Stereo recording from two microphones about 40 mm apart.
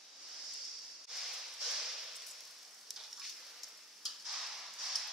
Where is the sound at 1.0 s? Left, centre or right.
Centre.